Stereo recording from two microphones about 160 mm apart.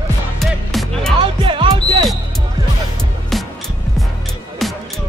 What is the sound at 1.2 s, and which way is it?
Music, 30° right (ahead or behind).